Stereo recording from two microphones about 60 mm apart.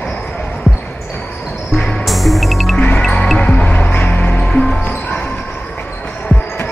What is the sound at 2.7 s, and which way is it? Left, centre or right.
Music, left.